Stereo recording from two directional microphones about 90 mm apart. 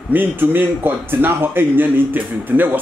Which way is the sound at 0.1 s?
20° right (ahead or behind).